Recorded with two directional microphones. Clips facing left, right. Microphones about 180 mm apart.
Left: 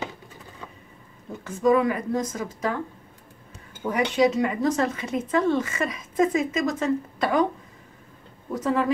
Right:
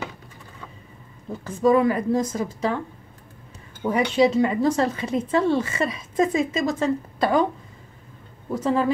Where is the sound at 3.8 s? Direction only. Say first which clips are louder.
Right 2 dB; 30° right (ahead or behind).